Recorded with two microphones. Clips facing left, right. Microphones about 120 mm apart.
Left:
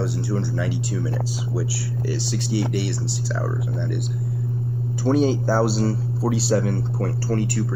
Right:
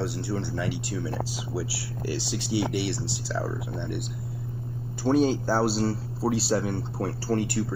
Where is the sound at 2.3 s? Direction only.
10° right (ahead or behind).